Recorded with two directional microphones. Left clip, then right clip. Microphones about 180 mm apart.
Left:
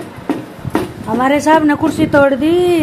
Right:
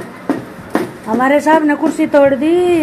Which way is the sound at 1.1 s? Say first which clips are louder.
Even; 10° left (ahead or behind).